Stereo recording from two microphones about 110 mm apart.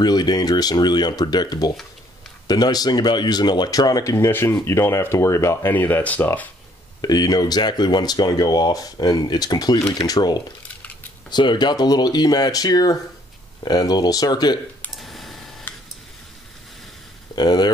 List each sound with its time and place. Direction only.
0.0 s speech: 40° left (ahead or behind)
5.7 s speech: 15° left (ahead or behind)
7.0 s speech: 35° left (ahead or behind)
14.9 s a sound: centre (ahead or behind)
17.4 s speech: 40° left (ahead or behind)